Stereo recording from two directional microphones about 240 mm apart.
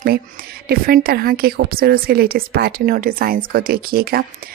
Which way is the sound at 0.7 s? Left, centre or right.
Right.